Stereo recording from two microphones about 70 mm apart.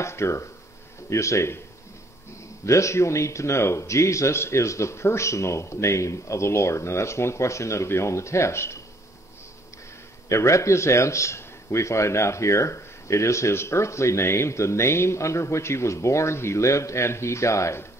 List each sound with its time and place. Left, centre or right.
0.0 s a man's voice: left
2.6 s a man's voice: left
10.2 s a man's voice: left